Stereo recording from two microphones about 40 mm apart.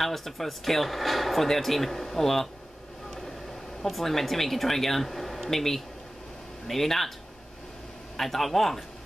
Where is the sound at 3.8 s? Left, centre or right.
Centre.